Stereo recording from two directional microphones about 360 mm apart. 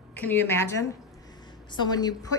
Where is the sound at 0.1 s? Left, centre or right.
Centre.